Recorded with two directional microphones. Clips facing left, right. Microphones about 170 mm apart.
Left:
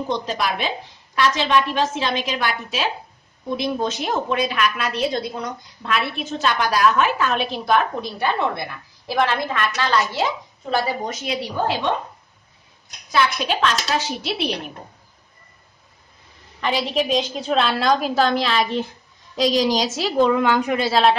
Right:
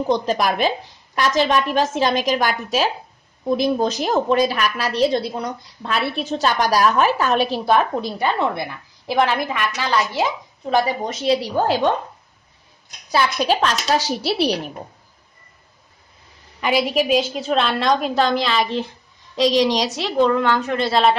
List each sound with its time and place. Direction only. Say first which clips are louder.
0.3 s a woman's voice: right 5 dB; 45° right (ahead or behind)
9.0 s a woman's voice: right 2 dB; 15° right (ahead or behind)
11.1 s a woman's voice: right 6 dB; 40° right (ahead or behind)
13.1 s a woman's voice: right 2 dB; 35° right (ahead or behind)
16.6 s a woman's voice: right 3 dB; 10° right (ahead or behind)